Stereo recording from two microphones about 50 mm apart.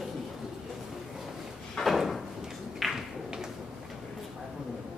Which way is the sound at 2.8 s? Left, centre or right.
Centre.